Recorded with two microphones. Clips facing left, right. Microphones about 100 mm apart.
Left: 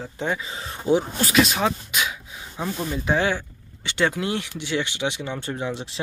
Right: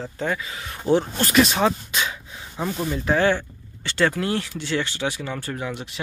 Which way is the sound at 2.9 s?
15° left (ahead or behind).